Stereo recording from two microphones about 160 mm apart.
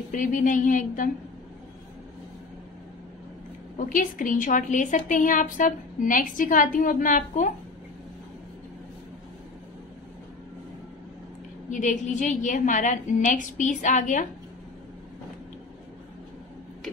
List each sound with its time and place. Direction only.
0.1 s a woman's voice: 55° left (ahead or behind)
3.7 s a woman's voice: 55° left (ahead or behind)
11.7 s a woman's voice: 50° left (ahead or behind)